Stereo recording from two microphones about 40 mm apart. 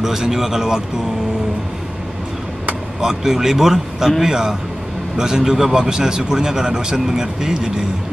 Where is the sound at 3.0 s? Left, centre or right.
Centre.